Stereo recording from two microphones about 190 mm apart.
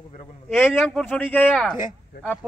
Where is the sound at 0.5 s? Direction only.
Centre (ahead or behind).